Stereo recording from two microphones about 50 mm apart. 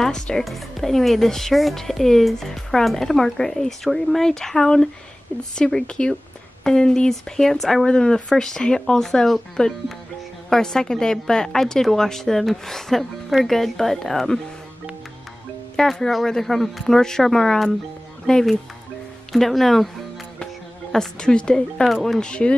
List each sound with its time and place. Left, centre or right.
0.0 s speech: centre
15.7 s speech: centre
20.9 s speech: centre